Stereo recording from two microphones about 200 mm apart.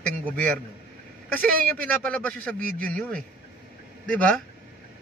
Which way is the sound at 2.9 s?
5° left (ahead or behind).